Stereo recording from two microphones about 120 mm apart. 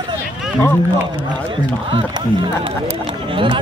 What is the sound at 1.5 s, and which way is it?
Speech, 45° right (ahead or behind).